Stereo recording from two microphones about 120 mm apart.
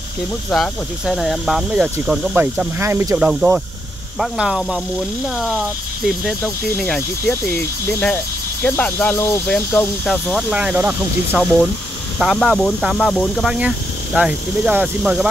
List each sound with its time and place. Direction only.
0.5 s speech: centre (ahead or behind)
2.3 s speech: 15° right (ahead or behind)
3.2 s speech: 10° right (ahead or behind)
6.8 s speech: 10° left (ahead or behind)
9.7 s speech: 10° left (ahead or behind)
10.5 s speech: 10° right (ahead or behind)
11.3 s speech: 5° left (ahead or behind)
13.5 s speech: 5° right (ahead or behind)